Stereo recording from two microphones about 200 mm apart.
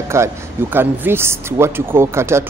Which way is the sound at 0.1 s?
10° right (ahead or behind).